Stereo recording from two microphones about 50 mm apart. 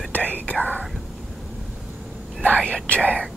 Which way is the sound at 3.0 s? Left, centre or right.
Right.